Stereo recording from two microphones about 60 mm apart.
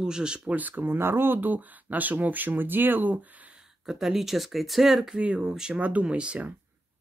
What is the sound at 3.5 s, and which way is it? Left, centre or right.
Speech, centre.